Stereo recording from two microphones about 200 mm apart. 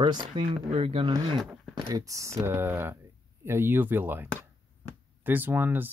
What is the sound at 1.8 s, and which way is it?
Speech, 15° right (ahead or behind).